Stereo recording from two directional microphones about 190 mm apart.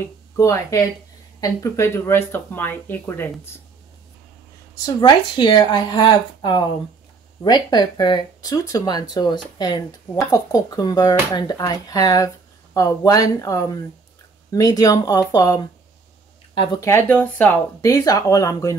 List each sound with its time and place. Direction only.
0.0 s speech: 15° left (ahead or behind)
4.8 s speech: 25° left (ahead or behind)
16.8 s speech: 10° left (ahead or behind)